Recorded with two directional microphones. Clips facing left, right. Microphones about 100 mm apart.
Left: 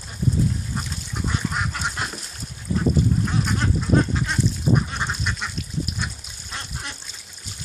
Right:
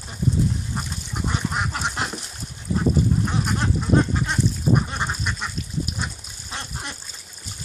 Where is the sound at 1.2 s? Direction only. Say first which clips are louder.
Right 1 dB; 15° right (ahead or behind).